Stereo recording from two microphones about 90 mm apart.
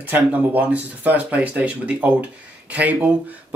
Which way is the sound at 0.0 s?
20° right (ahead or behind).